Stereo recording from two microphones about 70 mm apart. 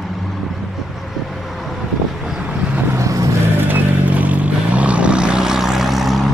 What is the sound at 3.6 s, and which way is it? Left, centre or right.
Vehicle, right.